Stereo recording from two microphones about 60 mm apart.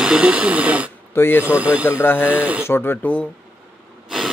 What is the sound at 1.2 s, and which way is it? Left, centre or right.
Speech, left.